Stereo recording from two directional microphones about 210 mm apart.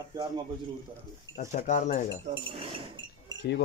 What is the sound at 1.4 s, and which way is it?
Speech, 35° left (ahead or behind).